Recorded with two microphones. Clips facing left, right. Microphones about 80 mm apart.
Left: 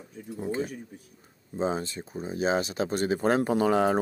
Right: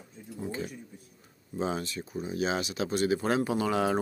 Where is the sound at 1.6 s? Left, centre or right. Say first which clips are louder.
Left 3 dB; left.